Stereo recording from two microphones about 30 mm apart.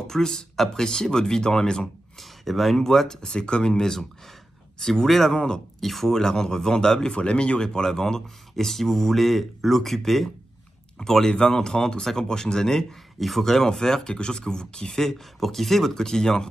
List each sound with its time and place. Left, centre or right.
0.0 s speech: centre
2.1 s speech: centre
2.9 s speech: centre
5.0 s speech: centre
5.8 s speech: centre
6.1 s speech: centre
7.2 s speech: left
7.6 s speech: left; by 10.3 s centre
11.2 s speech: left
15.0 s speech: centre